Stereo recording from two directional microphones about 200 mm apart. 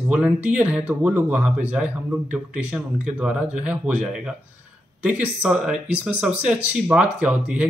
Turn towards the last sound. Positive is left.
turn(degrees=-10)  # may be behind; listen again after turning